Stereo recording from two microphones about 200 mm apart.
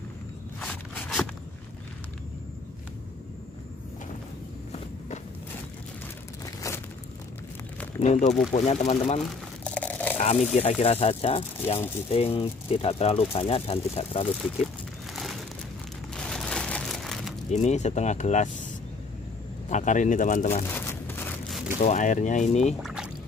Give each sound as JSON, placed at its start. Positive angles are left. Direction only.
{"t": 0.6, "sound": "walk", "side_deg": 5}
{"t": 8.0, "sound": "speech", "side_deg": 35}
{"t": 9.8, "sound": "a sound", "side_deg": 5}
{"t": 10.1, "sound": "speech", "side_deg": 35}
{"t": 15.1, "sound": "crumpling", "side_deg": 0}
{"t": 16.2, "sound": "a sound", "side_deg": 0}
{"t": 17.5, "sound": "speech", "side_deg": 35}
{"t": 19.7, "sound": "speech", "side_deg": 40}
{"t": 20.7, "sound": "a sound", "side_deg": 10}
{"t": 21.7, "sound": "speech", "side_deg": 35}
{"t": 22.8, "sound": "music", "side_deg": 0}